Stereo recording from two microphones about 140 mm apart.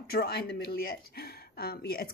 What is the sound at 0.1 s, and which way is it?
Speech, 90° left.